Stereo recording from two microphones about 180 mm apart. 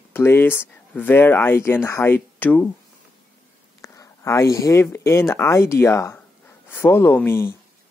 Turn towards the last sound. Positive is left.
turn(degrees=15)  # may be behind; listen again after turning